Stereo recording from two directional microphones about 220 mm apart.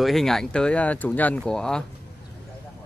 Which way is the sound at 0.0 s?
Centre (ahead or behind).